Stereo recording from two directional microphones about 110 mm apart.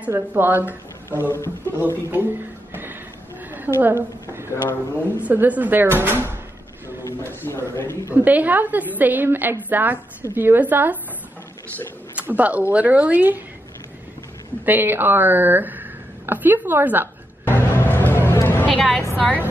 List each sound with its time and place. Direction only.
0.1 s a woman's voice: 15° right (ahead or behind)
2.7 s music: 20° right (ahead or behind)
3.5 s a sound: 15° right (ahead or behind)
4.5 s a man's voice: 20° left (ahead or behind)
5.2 s a woman's voice: 15° right (ahead or behind)
7.1 s a man's voice: 20° left (ahead or behind)
8.1 s a woman's voice: 15° right (ahead or behind)
12.2 s a woman's voice: 15° right (ahead or behind)
14.6 s speech: 20° right (ahead or behind)
17.5 s music: 20° left (ahead or behind)
18.8 s a woman's voice: centre (ahead or behind)